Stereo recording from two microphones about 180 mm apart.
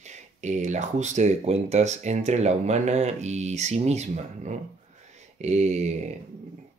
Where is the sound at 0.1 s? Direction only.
40° right (ahead or behind).